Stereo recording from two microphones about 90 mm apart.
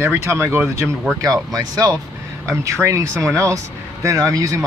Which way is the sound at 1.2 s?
40° right (ahead or behind).